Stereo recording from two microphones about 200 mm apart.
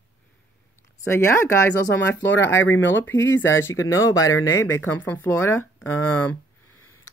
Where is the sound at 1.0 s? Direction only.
15° left (ahead or behind).